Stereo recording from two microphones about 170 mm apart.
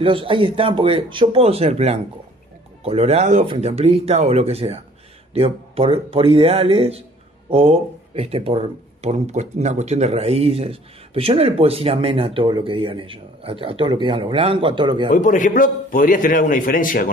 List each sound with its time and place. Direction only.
0.0 s speech: 30° right (ahead or behind)
15.0 s a man's voice: 50° left (ahead or behind)